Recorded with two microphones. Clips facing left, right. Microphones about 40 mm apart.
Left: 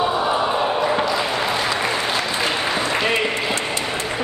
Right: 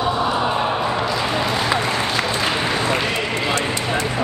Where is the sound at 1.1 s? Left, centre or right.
Centre.